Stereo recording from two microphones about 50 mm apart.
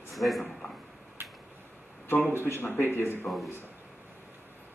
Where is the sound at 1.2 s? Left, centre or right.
Right.